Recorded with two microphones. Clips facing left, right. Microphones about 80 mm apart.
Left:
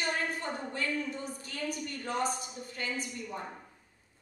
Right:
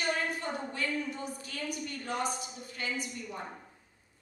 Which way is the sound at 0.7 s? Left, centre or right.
Left.